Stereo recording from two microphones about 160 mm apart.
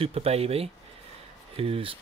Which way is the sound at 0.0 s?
40° right (ahead or behind).